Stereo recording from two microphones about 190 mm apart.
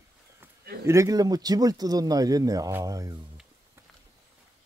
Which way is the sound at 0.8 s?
15° right (ahead or behind).